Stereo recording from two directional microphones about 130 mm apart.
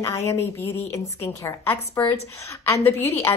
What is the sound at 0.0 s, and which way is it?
A woman's voice, 25° left (ahead or behind).